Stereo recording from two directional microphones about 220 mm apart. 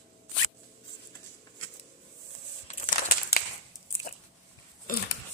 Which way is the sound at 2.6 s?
35° left (ahead or behind).